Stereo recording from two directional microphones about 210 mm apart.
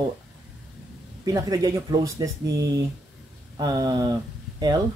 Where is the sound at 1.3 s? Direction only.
15° right (ahead or behind).